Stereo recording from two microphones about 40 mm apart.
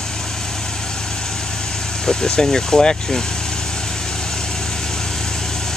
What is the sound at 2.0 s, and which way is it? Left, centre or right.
Speech, centre.